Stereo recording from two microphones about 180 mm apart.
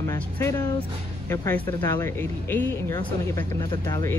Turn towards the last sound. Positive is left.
turn(degrees=15)  # may be behind; listen again after turning